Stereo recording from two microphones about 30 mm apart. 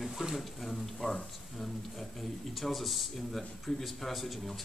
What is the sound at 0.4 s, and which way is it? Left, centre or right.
Speech, centre.